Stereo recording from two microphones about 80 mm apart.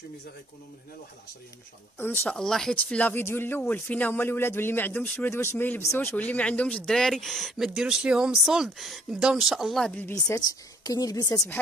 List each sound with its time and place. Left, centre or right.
2.0 s speech: left
2.2 s speech: centre
2.7 s speech: centre
5.3 s speech: left
6.1 s speech: centre
6.9 s speech: centre
10.0 s speech: left
10.4 s a woman's voice: left